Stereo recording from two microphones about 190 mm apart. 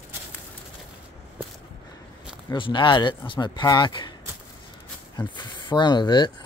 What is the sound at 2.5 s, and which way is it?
Speech, 25° left (ahead or behind).